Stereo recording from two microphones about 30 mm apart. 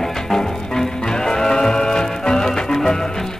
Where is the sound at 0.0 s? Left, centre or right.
Centre.